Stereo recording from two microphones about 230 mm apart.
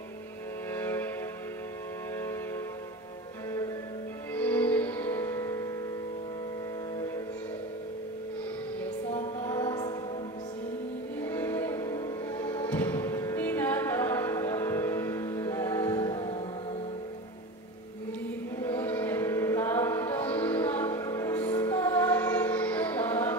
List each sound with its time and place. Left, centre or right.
0.7 s a sound: centre
4.3 s music: centre
9.4 s music: centre
11.2 s music: centre
18.6 s music: centre